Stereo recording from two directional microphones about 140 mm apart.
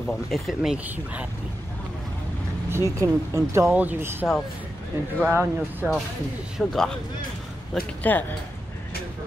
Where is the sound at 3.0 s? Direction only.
20° right (ahead or behind).